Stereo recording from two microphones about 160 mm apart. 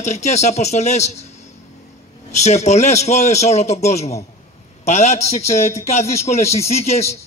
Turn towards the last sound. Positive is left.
turn(degrees=40)  # may be behind; listen again after turning